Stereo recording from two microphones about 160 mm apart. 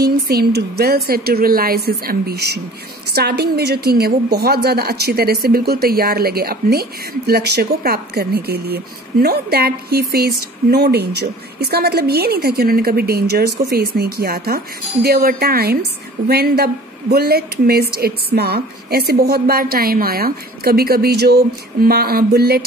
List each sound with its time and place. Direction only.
0.0 s a woman's voice: 85° right